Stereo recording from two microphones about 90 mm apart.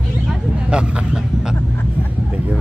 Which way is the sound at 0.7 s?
10° right (ahead or behind).